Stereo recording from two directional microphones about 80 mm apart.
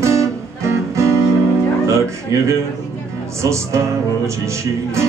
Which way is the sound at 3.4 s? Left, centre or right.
Right.